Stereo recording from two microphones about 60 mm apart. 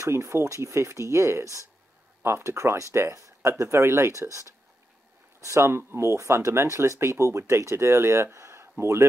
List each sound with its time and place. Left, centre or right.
0.0 s speech: right
2.2 s speech: right